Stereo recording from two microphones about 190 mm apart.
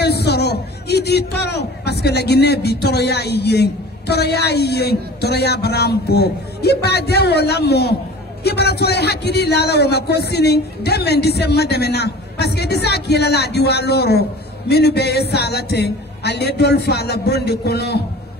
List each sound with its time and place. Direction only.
0.0 s a man's voice: 60° left (ahead or behind)